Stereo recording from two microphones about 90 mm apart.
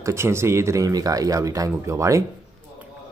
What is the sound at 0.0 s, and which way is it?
Speech, 30° right (ahead or behind).